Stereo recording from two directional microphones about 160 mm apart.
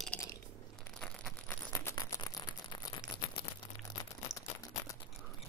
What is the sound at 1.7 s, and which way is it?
Rattle, 20° left (ahead or behind).